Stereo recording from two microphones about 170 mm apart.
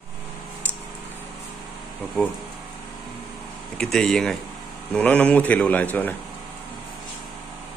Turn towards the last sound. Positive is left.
turn(degrees=10)  # may be behind; listen again after turning